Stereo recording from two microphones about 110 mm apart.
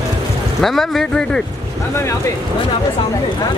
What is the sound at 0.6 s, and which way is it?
Speech, centre (ahead or behind).